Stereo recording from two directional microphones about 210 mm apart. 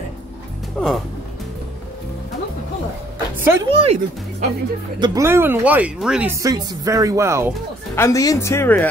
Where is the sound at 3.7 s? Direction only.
30° right (ahead or behind).